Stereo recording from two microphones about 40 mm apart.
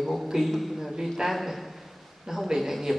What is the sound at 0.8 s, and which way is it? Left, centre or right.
A man's voice, centre.